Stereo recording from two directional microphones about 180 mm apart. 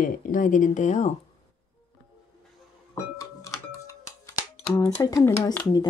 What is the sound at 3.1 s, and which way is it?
Music, 15° left (ahead or behind).